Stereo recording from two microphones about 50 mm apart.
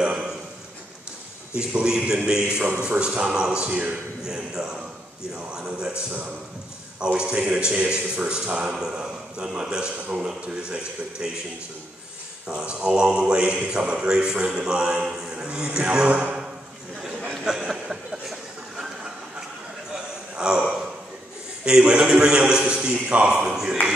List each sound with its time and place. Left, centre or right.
0.0 s a sound: centre
1.5 s a man's voice: right
7.0 s a man's voice: centre
12.4 s a man's voice: centre
16.1 s speech: right
17.5 s a sound: centre
21.6 s a man's voice: centre